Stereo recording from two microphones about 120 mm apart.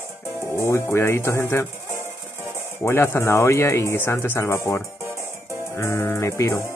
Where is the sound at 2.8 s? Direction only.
20° left (ahead or behind).